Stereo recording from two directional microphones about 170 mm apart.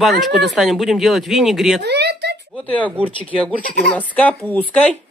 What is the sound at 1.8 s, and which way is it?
Speech, 75° right (ahead or behind).